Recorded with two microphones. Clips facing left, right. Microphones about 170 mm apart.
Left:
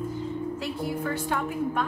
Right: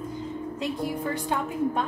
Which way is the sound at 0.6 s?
20° right (ahead or behind).